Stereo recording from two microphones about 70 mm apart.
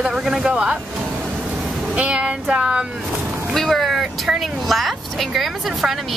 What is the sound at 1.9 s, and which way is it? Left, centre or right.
Child singing, centre.